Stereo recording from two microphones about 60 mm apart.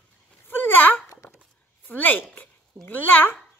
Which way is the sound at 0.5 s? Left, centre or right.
Left.